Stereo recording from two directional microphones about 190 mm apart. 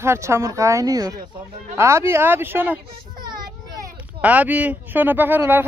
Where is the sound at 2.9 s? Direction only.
20° right (ahead or behind).